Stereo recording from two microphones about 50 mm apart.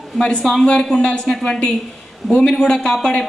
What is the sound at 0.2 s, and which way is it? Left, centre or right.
A man's voice, centre.